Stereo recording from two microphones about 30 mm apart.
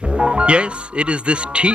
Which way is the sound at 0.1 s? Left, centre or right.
Right.